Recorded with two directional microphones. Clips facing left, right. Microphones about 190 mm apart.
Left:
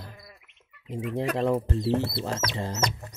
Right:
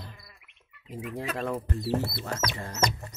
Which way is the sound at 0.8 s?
25° left (ahead or behind).